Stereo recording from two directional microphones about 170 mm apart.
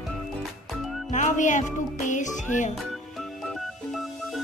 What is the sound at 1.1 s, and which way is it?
Music, 45° left (ahead or behind).